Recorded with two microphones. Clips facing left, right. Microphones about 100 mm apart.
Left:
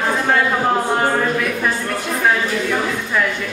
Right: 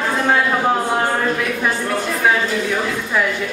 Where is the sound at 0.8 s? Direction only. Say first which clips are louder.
Left 1 dB; centre (ahead or behind).